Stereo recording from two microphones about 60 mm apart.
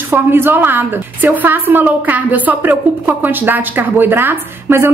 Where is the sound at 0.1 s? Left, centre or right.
Right.